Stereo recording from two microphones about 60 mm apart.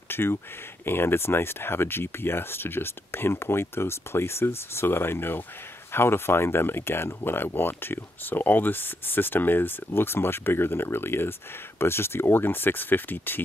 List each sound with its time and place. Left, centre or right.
0.1 s speech: left